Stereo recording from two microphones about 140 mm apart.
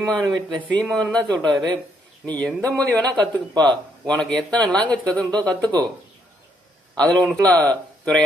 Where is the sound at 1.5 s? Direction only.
30° right (ahead or behind).